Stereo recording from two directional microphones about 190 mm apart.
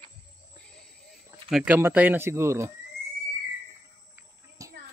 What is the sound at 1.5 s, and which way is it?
Speech, 5° right (ahead or behind).